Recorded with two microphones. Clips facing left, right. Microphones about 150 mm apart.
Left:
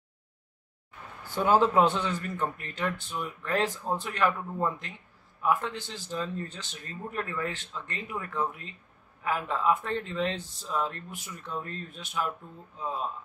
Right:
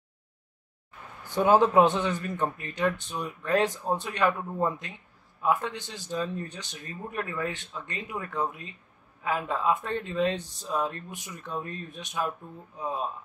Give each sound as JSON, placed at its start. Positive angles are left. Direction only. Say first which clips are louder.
{"t": 1.2, "sound": "speech", "louder": "right 2 dB", "side_deg": -20}